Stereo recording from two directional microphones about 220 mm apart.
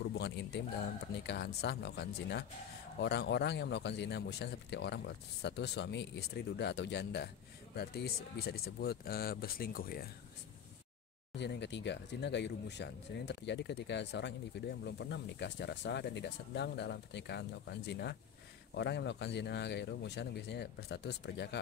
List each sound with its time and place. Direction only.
0.1 s a sound: 50° left (ahead or behind)
1.2 s speech: 50° left (ahead or behind)
11.3 s speech: 50° left (ahead or behind)